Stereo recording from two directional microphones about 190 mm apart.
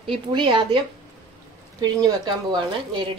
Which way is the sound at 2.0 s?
20° right (ahead or behind).